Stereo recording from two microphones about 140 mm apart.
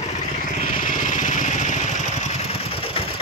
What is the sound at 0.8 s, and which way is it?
Vehicle, 70° left (ahead or behind).